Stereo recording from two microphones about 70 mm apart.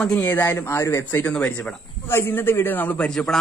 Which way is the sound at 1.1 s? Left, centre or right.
Left.